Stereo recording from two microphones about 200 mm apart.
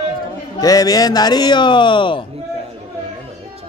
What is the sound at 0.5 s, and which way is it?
Speech, 20° left (ahead or behind).